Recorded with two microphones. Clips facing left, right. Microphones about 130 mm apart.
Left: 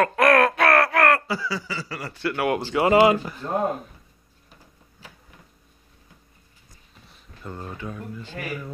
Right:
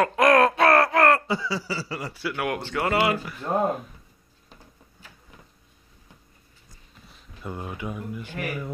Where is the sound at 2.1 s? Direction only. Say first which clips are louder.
Left 5 dB; centre (ahead or behind).